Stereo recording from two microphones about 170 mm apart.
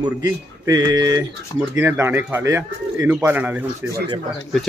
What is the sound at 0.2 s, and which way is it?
Speech, 20° right (ahead or behind).